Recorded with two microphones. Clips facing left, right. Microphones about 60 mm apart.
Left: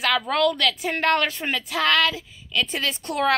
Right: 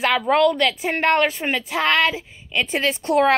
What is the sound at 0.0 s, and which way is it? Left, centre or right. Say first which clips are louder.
A woman's voice: right 4 dB; centre.